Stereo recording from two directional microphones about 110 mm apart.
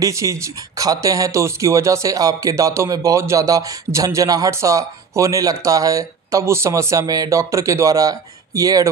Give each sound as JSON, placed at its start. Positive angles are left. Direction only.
{"t": 0.0, "sound": "speech", "side_deg": -30}